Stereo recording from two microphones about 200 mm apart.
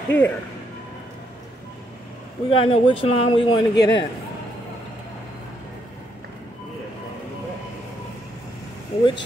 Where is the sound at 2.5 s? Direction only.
25° left (ahead or behind).